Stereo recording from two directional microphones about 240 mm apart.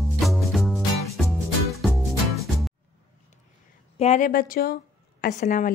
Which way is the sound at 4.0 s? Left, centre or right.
Left.